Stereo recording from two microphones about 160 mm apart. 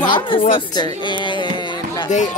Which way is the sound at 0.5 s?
30° left (ahead or behind).